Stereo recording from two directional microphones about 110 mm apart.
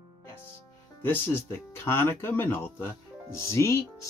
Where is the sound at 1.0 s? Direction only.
20° left (ahead or behind).